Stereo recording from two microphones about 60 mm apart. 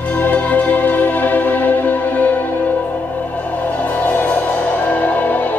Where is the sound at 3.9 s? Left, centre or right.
Left.